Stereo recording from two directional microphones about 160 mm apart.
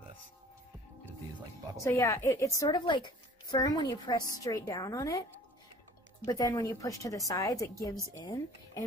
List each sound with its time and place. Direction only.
1.8 s a woman's voice: 20° left (ahead or behind)
6.2 s a woman's voice: 25° left (ahead or behind)